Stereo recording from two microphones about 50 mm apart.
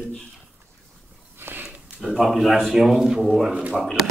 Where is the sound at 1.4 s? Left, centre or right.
Right.